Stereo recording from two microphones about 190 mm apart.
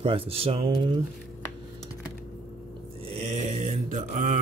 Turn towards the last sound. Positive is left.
turn(degrees=-40)  # may be behind; listen again after turning